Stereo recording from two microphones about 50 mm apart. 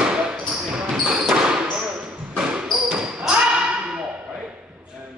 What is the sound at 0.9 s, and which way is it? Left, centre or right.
Basketball bounce, centre.